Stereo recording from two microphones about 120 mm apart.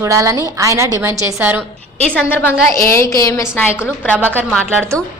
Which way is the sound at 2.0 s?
15° left (ahead or behind).